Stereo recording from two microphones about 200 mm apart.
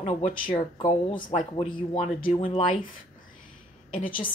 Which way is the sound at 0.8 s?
25° left (ahead or behind).